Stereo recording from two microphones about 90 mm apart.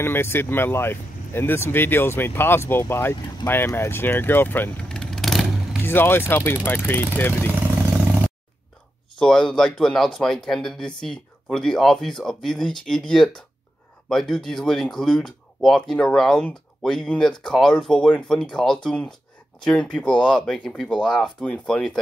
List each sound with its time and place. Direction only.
0.0 s speech: 25° left (ahead or behind)
4.7 s vehicle: 10° left (ahead or behind)
5.8 s speech: 25° left (ahead or behind)
7.7 s a sound: 20° right (ahead or behind)
9.2 s speech: 5° left (ahead or behind)